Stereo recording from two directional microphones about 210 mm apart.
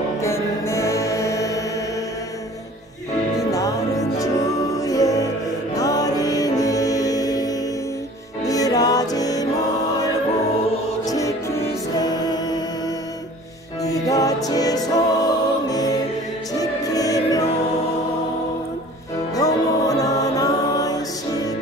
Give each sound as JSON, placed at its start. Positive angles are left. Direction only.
{"t": 0.2, "sound": "music", "side_deg": 15}
{"t": 3.3, "sound": "music", "side_deg": 15}
{"t": 11.1, "sound": "music", "side_deg": 15}
{"t": 19.3, "sound": "music", "side_deg": 15}